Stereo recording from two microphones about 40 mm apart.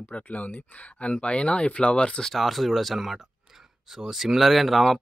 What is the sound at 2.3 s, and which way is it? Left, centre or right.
Speech, centre.